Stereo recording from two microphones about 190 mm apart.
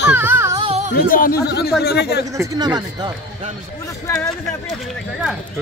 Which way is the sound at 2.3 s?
15° right (ahead or behind).